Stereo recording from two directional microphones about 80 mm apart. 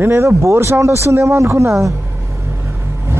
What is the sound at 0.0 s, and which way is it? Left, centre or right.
A man's voice, right.